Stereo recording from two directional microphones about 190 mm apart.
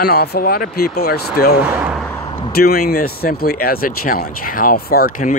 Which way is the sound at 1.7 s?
5° right (ahead or behind).